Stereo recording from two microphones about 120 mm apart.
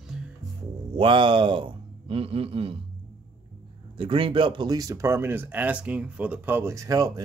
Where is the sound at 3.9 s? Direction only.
50° right (ahead or behind).